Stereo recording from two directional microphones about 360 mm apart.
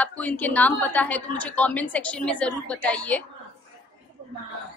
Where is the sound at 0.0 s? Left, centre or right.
Centre.